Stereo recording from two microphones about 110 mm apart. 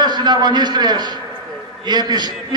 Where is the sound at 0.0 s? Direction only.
40° right (ahead or behind).